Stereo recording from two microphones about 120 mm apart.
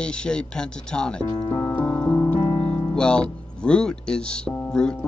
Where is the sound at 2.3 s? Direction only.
50° left (ahead or behind).